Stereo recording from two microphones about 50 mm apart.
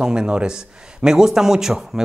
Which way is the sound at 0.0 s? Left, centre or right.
Centre.